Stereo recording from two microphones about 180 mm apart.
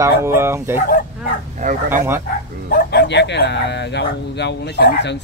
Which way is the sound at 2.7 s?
60° left (ahead or behind).